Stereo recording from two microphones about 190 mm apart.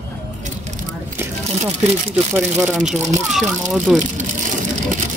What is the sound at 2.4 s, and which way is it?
A child's voice, 5° right (ahead or behind).